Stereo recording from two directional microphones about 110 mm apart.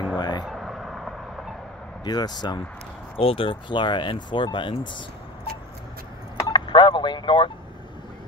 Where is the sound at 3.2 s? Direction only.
55° left (ahead or behind).